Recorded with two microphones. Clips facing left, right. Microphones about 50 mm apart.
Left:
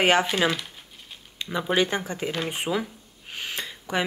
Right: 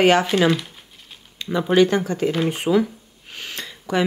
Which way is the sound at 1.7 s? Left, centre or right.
Centre.